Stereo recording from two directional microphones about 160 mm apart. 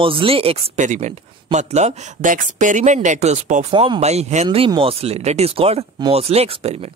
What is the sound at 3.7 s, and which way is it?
Speech, 35° right (ahead or behind).